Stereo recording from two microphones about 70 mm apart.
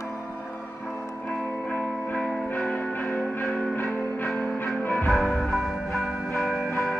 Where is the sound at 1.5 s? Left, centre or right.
Left.